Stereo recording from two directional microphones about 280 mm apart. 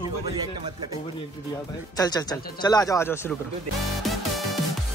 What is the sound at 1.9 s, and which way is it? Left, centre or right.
Speech, centre.